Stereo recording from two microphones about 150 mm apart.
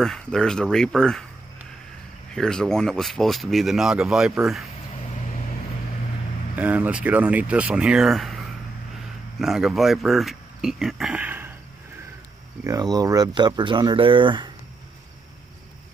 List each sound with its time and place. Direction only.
0.0 s speech: 5° left (ahead or behind)
2.3 s speech: 5° left (ahead or behind)
6.5 s speech: 10° right (ahead or behind)
12.6 s speech: 25° right (ahead or behind)